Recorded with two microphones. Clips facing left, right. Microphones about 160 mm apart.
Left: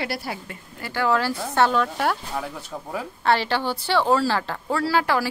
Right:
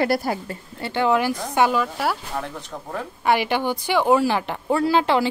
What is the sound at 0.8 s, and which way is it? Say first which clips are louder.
A woman's voice: right 3 dB; 20° right (ahead or behind).